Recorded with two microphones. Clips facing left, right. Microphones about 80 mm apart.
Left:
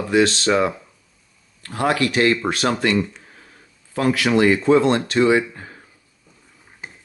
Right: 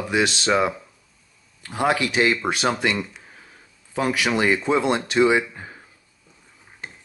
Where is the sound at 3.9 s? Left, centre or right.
Centre.